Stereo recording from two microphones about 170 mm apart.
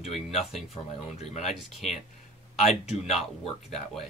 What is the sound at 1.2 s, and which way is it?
Speech, 40° left (ahead or behind).